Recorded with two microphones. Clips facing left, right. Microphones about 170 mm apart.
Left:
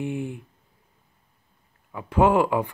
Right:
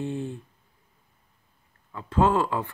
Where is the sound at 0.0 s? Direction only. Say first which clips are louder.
Left 2 dB; 15° left (ahead or behind).